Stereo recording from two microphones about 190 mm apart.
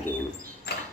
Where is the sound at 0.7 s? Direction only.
55° left (ahead or behind).